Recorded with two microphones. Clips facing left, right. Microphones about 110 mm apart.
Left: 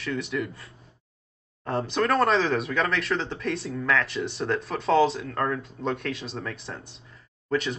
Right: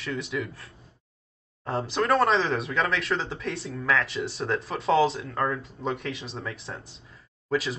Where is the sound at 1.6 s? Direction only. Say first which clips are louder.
Left 1 dB; centre (ahead or behind).